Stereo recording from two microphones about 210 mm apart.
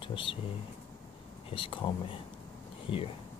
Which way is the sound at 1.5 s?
25° left (ahead or behind).